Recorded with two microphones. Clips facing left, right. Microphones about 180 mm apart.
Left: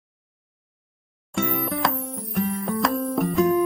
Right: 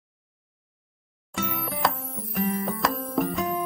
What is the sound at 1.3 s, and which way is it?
Music, centre (ahead or behind).